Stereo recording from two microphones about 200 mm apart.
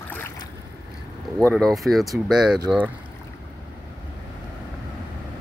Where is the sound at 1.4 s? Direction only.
5° left (ahead or behind).